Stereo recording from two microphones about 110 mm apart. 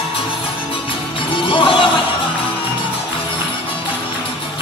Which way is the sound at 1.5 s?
50° left (ahead or behind).